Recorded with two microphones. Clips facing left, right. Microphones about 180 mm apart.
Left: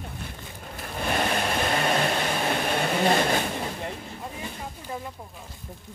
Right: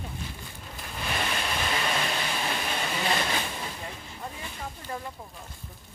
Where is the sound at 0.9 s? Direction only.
50° left (ahead or behind).